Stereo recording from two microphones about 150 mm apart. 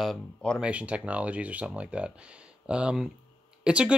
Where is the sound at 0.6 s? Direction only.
10° right (ahead or behind).